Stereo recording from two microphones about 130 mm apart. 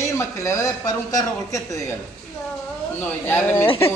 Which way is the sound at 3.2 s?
20° left (ahead or behind).